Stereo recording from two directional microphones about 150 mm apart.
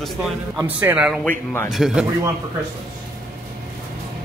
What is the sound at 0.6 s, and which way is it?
Speech, 10° right (ahead or behind).